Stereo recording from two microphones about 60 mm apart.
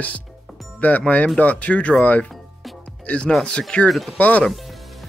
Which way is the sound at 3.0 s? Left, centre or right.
Centre.